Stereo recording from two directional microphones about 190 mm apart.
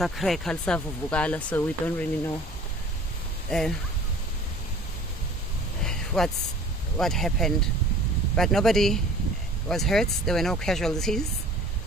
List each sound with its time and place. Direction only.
0.0 s speech: centre (ahead or behind)
3.4 s speech: 5° left (ahead or behind)
5.9 s a sound: 5° left (ahead or behind)
7.0 s speech: centre (ahead or behind)